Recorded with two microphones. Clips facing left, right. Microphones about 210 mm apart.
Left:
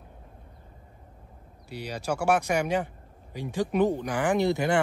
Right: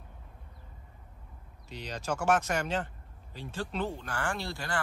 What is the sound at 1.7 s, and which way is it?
Speech, 10° left (ahead or behind).